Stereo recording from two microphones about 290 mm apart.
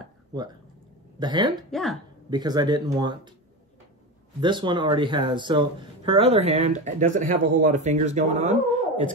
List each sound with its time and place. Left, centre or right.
1.2 s speech: centre
1.7 s speech: centre
2.2 s speech: centre
4.4 s speech: centre